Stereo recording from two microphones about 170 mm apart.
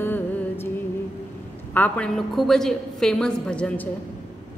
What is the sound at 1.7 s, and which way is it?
A woman's voice, 10° left (ahead or behind).